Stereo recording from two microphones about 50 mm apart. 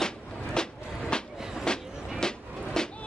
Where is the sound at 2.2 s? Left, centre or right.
Centre.